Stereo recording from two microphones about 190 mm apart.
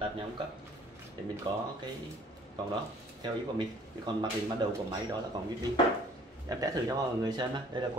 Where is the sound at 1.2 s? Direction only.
25° right (ahead or behind).